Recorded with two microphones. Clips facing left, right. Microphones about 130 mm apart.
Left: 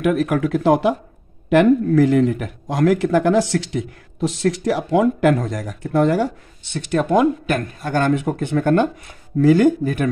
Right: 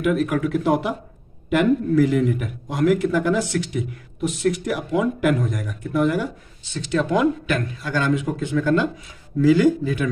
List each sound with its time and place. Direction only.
0.0 s a man's voice: 70° left (ahead or behind); by 10.0 s 55° left (ahead or behind)